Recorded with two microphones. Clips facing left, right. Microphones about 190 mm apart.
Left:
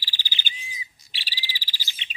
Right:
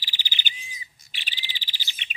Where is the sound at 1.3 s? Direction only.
20° right (ahead or behind).